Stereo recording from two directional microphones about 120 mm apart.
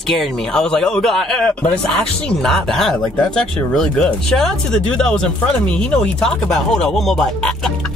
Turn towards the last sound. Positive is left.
turn(degrees=5)  # may be behind; listen again after turning